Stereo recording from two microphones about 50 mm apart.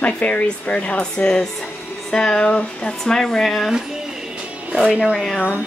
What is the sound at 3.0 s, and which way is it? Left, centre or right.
Speech, centre.